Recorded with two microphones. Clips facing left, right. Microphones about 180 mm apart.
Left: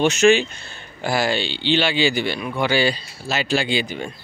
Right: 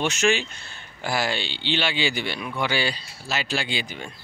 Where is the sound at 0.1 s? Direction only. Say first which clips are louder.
Left 8 dB; 90° left.